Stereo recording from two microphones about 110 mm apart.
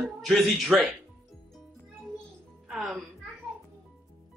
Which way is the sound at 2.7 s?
Centre (ahead or behind).